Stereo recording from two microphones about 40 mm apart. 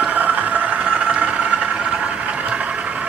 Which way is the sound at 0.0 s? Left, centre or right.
Right.